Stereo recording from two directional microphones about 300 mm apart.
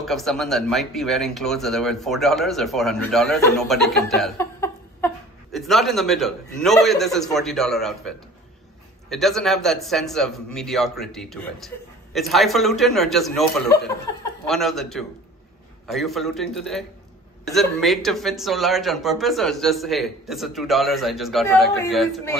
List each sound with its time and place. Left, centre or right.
0.0 s speech: centre
9.1 s speech: centre